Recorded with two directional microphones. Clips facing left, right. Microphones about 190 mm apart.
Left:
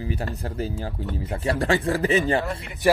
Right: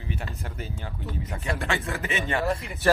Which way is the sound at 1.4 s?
35° left (ahead or behind).